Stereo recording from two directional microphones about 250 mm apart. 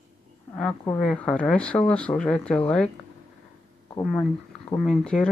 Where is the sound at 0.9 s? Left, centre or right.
Centre.